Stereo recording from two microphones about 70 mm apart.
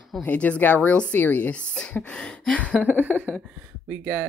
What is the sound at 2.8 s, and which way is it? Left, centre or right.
Speech, right.